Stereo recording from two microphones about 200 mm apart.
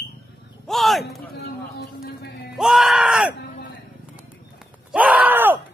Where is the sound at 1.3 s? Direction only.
55° left (ahead or behind).